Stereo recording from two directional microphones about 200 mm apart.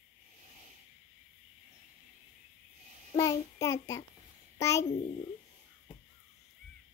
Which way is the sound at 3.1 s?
15° left (ahead or behind).